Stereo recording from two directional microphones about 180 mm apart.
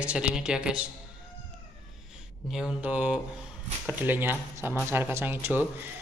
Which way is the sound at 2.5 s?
5° right (ahead or behind).